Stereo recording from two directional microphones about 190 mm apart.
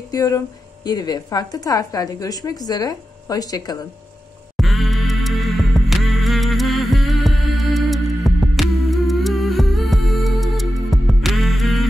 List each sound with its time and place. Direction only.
0.1 s a woman's voice: 20° left (ahead or behind)
4.6 s music: centre (ahead or behind)